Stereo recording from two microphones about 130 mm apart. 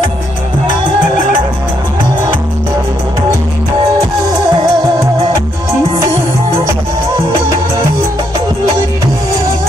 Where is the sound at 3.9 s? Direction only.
30° right (ahead or behind).